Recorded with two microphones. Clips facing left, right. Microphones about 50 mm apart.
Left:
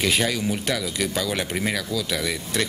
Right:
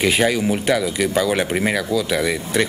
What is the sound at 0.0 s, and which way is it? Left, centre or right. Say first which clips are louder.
Speech: right 5 dB; centre.